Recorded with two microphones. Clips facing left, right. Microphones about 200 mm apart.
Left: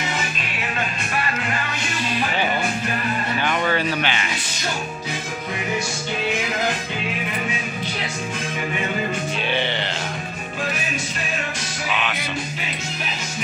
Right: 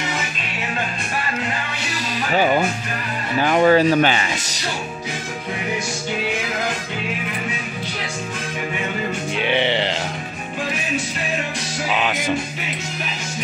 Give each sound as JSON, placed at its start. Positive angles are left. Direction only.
{"t": 2.1, "sound": "music", "side_deg": -40}
{"t": 3.3, "sound": "a sound", "side_deg": -35}
{"t": 9.4, "sound": "music", "side_deg": -20}
{"t": 11.9, "sound": "music", "side_deg": -40}